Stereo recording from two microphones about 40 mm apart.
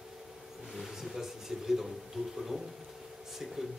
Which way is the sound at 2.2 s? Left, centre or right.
Centre.